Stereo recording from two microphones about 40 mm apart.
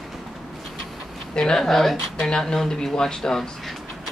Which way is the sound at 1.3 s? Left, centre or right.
Centre.